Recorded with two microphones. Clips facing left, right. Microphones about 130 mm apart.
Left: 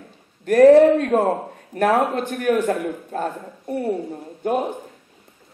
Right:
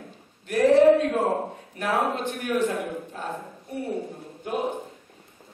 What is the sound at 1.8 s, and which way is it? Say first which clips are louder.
Speech: left 7 dB; 50° left (ahead or behind).